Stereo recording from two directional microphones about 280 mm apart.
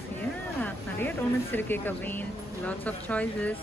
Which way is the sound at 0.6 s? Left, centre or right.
Centre.